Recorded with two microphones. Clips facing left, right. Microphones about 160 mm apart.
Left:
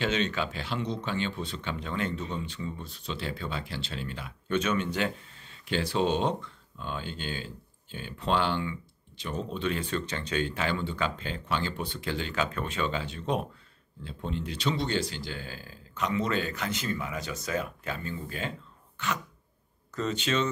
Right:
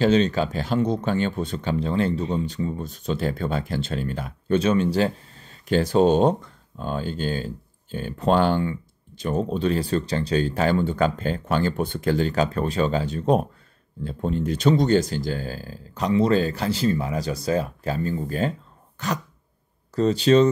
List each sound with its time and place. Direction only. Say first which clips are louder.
0.0 s speech: right 10 dB; 35° right (ahead or behind)
19.0 s a sound: right 5 dB; 40° right (ahead or behind)
20.0 s speech: right 12 dB; 35° right (ahead or behind)